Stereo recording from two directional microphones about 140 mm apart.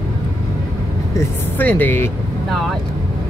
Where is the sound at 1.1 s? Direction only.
15° left (ahead or behind).